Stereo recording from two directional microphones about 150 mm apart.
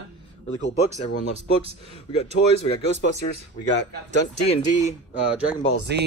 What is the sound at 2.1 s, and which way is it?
Speech, 30° left (ahead or behind).